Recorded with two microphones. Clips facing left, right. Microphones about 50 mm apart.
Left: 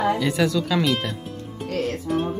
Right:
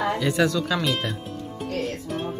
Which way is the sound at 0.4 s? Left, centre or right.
Centre.